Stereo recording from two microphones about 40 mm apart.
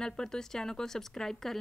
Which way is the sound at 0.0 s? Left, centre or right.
Centre.